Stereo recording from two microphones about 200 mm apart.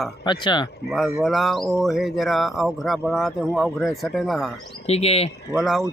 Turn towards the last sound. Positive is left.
turn(degrees=0)  # may be behind; listen again after turning